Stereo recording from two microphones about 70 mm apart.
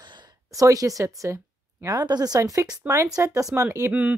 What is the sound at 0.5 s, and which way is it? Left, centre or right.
Speech, right.